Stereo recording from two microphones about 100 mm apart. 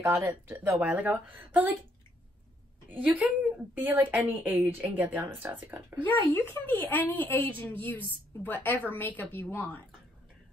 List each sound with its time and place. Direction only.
0.0 s speech: 30° right (ahead or behind)
2.9 s speech: 15° right (ahead or behind)
6.3 s a woman's voice: 20° left (ahead or behind)